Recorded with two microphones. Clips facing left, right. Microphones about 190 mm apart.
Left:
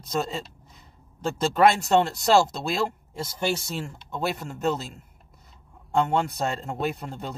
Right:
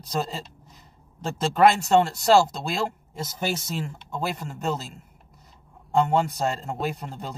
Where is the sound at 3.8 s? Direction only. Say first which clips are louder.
Left 1 dB; centre (ahead or behind).